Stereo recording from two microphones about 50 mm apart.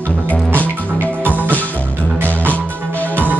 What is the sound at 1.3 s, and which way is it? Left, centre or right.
Music, right.